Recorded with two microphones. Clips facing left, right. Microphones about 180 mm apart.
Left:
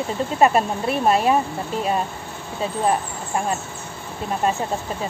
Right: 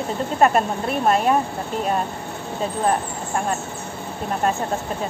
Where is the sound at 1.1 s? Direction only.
5° left (ahead or behind).